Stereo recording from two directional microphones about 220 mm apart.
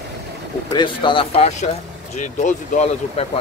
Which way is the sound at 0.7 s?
20° left (ahead or behind).